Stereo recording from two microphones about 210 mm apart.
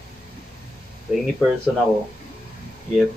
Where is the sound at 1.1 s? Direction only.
5° right (ahead or behind).